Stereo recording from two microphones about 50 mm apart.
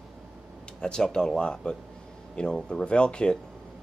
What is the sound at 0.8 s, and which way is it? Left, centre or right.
Speech, centre.